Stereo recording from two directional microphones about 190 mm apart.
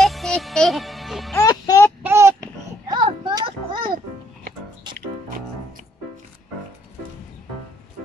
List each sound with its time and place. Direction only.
0.0 s music: centre (ahead or behind)
1.3 s music: 20° left (ahead or behind)
2.0 s a sound: 15° right (ahead or behind)
4.9 s music: 25° right (ahead or behind)